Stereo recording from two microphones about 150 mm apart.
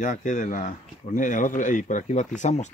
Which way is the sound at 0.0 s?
55° left (ahead or behind).